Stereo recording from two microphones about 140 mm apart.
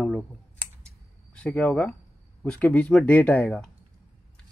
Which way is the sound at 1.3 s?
10° left (ahead or behind).